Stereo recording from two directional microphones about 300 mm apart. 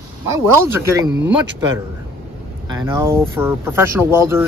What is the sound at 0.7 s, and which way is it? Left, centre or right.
Speech, centre.